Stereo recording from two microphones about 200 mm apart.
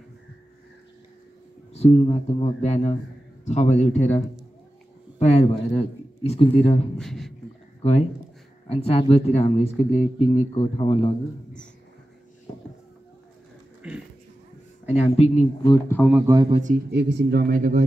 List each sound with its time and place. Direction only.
1.7 s speech: 30° left (ahead or behind)
5.2 s speech: 30° left (ahead or behind)
7.0 s speech: centre (ahead or behind)
7.8 s speech: 30° left (ahead or behind)
13.8 s speech: 5° right (ahead or behind)
15.0 s speech: 30° left (ahead or behind)
15.6 s speech: 20° left (ahead or behind)
16.1 s speech: 10° right (ahead or behind)
16.3 s a man's voice: 30° right (ahead or behind)
16.9 s speech: 60° right (ahead or behind); by 17.8 s 40° right (ahead or behind)